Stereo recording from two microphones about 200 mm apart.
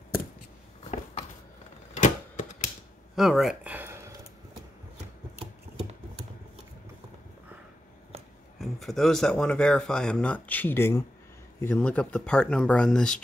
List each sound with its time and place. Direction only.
2.0 s typewriter: 40° left (ahead or behind)
3.2 s a sound: centre (ahead or behind)
8.5 s speech: centre (ahead or behind)